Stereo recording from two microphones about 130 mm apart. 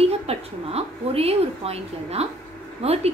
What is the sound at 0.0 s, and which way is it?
A woman's voice, 50° right (ahead or behind).